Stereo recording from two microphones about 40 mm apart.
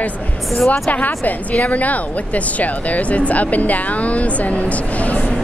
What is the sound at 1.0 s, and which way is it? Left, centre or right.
A woman's voice, left.